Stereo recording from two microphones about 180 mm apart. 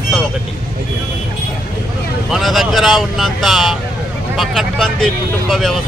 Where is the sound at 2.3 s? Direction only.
Centre (ahead or behind).